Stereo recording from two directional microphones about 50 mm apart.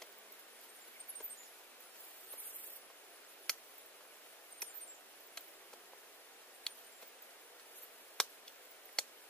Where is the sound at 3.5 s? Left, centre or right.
Centre.